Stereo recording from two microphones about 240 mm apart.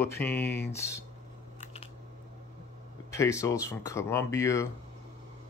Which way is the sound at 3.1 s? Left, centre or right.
Centre.